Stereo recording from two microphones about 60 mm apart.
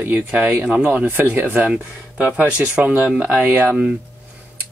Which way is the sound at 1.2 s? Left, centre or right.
Right.